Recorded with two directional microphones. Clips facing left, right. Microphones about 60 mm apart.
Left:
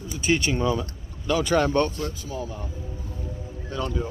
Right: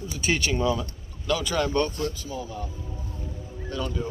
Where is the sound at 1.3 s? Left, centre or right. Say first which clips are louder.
Left 4 dB; left.